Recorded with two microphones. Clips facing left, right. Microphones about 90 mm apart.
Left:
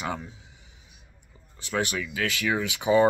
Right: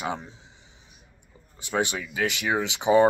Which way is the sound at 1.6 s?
20° right (ahead or behind).